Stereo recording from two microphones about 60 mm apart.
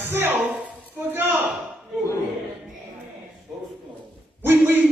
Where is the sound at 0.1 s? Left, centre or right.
Right.